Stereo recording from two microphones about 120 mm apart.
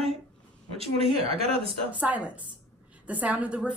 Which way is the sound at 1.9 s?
10° right (ahead or behind).